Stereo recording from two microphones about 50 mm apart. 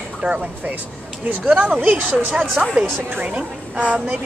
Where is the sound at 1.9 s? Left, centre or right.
Right.